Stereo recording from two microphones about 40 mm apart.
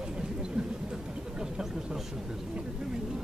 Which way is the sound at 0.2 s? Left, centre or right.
Right.